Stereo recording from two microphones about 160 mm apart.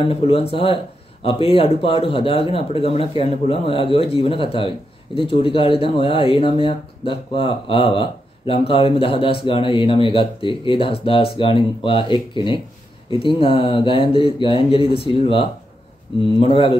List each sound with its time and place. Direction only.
0.0 s speech: 35° left (ahead or behind)